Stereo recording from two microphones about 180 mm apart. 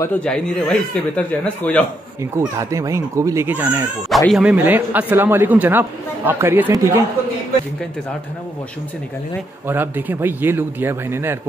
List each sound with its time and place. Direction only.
0.0 s speech: 5° left (ahead or behind)
2.3 s a man's voice: 15° right (ahead or behind)
9.7 s a man's voice: 10° right (ahead or behind)